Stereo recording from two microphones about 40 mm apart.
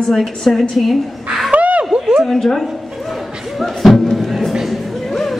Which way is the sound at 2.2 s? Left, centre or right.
Centre.